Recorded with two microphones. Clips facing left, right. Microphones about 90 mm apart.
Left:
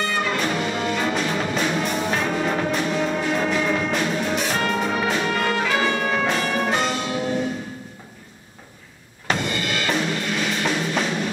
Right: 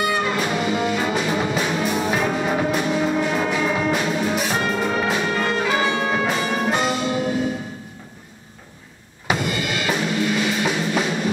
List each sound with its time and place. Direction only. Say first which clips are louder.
0.0 s music: right 2 dB; 5° right (ahead or behind)
5.5 s music: right 1 dB; 20° right (ahead or behind)
9.3 s drum kit: right 1 dB; 5° right (ahead or behind)